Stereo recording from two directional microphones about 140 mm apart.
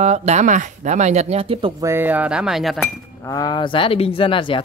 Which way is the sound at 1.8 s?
15° right (ahead or behind).